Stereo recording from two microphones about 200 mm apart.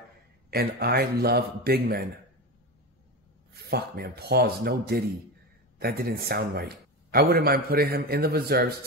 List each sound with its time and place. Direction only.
0.5 s a man's voice: 50° right (ahead or behind)
3.7 s a man's voice: 50° right (ahead or behind)